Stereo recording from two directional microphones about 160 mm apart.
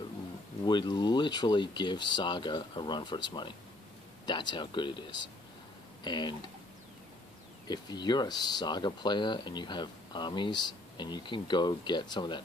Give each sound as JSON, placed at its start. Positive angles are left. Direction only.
{"t": 0.7, "sound": "speech", "side_deg": 30}
{"t": 7.6, "sound": "speech", "side_deg": 25}